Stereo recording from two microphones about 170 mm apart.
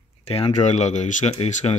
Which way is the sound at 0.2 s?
35° left (ahead or behind).